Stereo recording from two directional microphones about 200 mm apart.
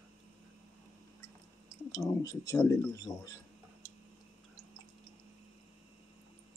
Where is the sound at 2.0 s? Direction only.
15° left (ahead or behind).